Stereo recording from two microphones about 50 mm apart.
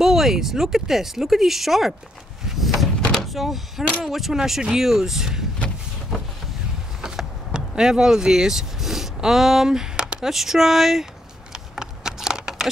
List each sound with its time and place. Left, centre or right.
0.0 s speech: centre
2.4 s a sound: centre
3.3 s speech: centre
7.0 s vehicle: centre
10.3 s speech: centre
11.5 s computer keyboard: centre